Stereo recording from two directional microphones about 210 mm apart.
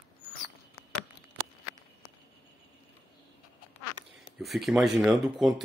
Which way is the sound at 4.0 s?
60° right (ahead or behind).